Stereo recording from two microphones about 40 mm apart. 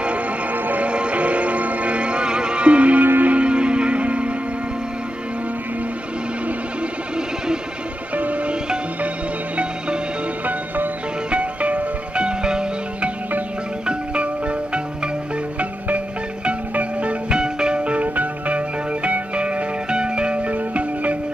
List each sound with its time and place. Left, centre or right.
0.8 s music: right
8.2 s music: right
11.2 s music: right
12.3 s music: right
17.3 s music: right